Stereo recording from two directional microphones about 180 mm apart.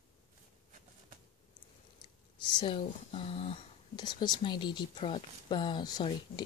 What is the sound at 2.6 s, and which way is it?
Speech, 30° left (ahead or behind).